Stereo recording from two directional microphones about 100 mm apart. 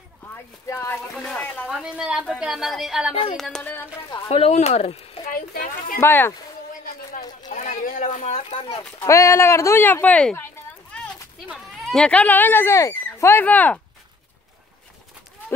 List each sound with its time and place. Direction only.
0.3 s speech: 25° left (ahead or behind)
1.1 s speech: 10° left (ahead or behind)
1.7 s a woman's voice: 10° right (ahead or behind)
3.6 s speech: 20° left (ahead or behind)
4.3 s speech: 90° left
5.9 s speech: 25° left (ahead or behind)
7.7 s speech: 75° left (ahead or behind)
9.0 s speech: 30° left (ahead or behind); by 10.3 s 15° left (ahead or behind)
11.5 s speech: centre (ahead or behind)